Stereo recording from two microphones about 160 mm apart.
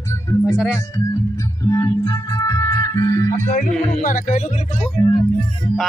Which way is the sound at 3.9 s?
55° left (ahead or behind).